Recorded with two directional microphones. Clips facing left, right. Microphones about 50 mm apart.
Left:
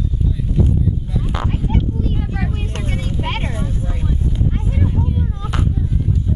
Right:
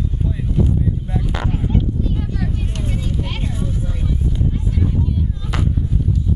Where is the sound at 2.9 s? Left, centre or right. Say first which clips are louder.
Left 3 dB; left.